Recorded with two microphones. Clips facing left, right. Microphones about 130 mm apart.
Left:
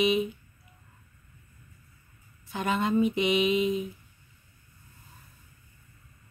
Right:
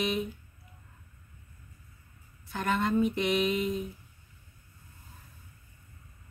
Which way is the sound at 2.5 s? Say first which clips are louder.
Left 1 dB; 5° left (ahead or behind).